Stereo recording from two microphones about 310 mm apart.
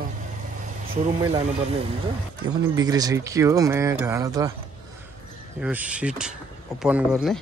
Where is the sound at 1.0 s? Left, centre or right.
Centre.